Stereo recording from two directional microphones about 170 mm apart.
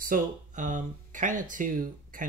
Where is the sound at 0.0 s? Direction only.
50° right (ahead or behind).